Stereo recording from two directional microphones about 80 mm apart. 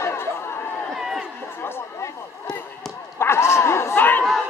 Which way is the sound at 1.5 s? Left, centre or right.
Left.